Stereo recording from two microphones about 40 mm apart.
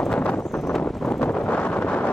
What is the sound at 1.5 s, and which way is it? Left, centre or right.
Wind noise, left.